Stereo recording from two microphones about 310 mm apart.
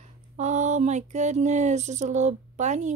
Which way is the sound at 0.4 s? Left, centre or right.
Right.